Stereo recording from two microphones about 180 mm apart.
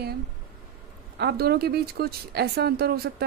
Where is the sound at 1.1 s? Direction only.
60° right (ahead or behind).